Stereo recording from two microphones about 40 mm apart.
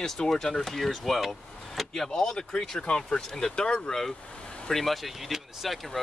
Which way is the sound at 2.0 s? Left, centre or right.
Centre.